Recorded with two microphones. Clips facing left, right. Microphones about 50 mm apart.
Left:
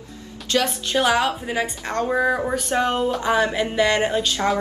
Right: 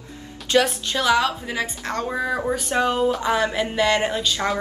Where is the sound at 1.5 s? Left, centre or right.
Centre.